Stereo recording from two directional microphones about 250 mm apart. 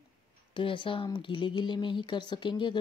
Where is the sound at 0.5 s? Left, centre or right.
Centre.